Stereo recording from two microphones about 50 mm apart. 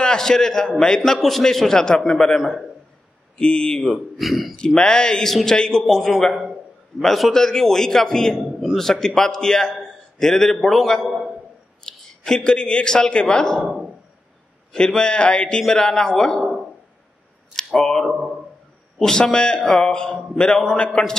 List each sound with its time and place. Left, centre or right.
0.0 s a man's voice: centre
4.2 s a man's voice: centre
4.6 s a man's voice: centre
11.9 s a sound: centre
12.3 s a man's voice: centre
14.7 s a man's voice: centre
16.3 s a sound: centre
17.6 s a man's voice: centre